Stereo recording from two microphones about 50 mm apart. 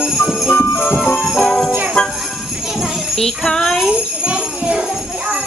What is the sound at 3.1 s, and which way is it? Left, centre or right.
Speech, centre.